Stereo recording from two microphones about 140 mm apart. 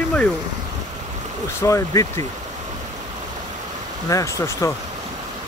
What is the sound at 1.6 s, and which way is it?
Speech, 20° left (ahead or behind).